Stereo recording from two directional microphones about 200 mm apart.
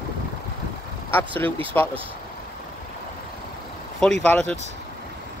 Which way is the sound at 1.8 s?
10° left (ahead or behind).